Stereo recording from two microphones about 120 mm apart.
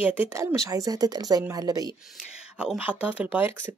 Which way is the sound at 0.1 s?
20° right (ahead or behind).